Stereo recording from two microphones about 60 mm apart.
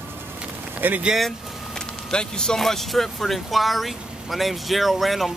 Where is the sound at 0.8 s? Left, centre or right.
Right.